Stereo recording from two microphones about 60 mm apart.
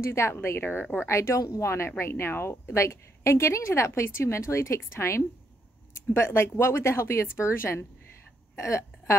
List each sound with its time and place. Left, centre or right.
0.0 s a woman's voice: left